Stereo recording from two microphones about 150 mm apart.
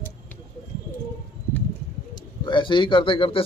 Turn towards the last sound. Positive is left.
turn(degrees=35)  # may be behind; listen again after turning